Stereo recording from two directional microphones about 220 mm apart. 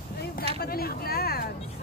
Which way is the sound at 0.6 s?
45° left (ahead or behind).